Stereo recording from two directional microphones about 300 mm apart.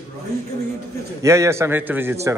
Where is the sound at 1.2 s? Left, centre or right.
Centre.